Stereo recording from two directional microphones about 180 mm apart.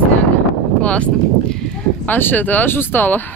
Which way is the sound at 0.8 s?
5° left (ahead or behind).